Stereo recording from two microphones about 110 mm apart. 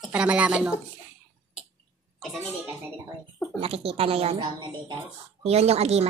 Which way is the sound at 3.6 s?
65° right (ahead or behind).